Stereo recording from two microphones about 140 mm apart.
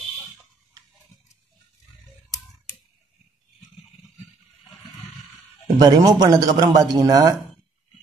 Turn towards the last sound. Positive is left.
turn(degrees=-25)  # may be behind; listen again after turning